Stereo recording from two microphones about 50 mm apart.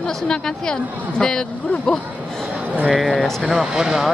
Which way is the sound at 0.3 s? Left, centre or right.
Centre.